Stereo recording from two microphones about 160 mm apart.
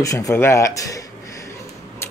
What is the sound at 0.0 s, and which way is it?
Speech, 20° left (ahead or behind).